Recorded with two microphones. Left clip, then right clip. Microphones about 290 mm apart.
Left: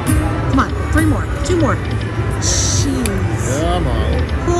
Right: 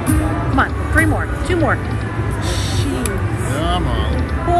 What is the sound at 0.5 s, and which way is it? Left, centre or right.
Music, centre.